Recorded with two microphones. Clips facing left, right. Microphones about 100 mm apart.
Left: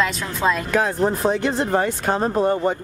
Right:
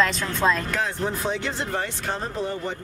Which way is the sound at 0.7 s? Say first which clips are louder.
Left 7 dB; 50° left (ahead or behind).